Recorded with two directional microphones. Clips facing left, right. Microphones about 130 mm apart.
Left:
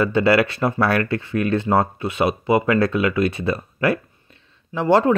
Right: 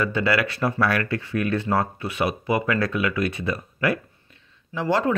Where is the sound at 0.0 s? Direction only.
30° left (ahead or behind).